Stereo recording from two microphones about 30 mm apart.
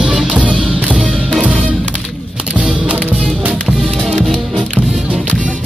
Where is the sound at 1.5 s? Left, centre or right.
Right.